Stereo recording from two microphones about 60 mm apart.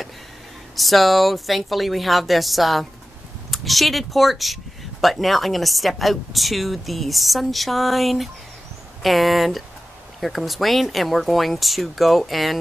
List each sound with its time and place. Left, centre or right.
0.7 s a woman's voice: centre